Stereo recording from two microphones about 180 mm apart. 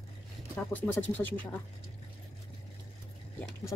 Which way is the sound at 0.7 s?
10° left (ahead or behind).